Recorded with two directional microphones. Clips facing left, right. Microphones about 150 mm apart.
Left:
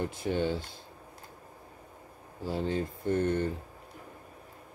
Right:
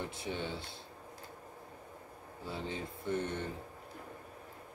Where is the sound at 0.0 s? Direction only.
45° left (ahead or behind).